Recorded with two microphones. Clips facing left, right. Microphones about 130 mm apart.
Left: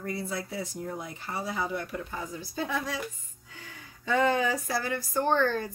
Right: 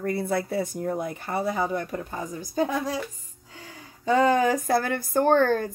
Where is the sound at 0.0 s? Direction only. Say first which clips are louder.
Right 8 dB; 55° right (ahead or behind).